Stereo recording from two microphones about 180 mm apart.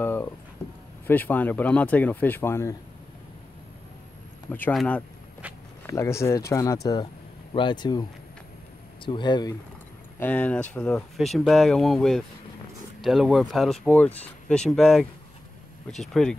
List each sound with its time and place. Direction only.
0.0 s a sound: 10° left (ahead or behind)
1.0 s speech: 10° left (ahead or behind)
4.5 s speech: 10° left (ahead or behind)
10.1 s speech: 10° left (ahead or behind)